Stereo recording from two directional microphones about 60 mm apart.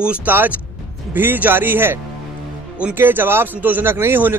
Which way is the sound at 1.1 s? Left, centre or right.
Right.